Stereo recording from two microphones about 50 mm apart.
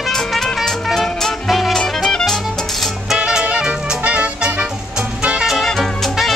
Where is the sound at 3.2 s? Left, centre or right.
Right.